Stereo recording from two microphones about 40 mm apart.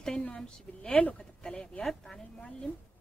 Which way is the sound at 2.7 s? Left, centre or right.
Left.